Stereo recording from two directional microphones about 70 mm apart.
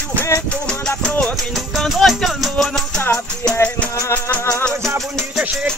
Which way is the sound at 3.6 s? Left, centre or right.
Left.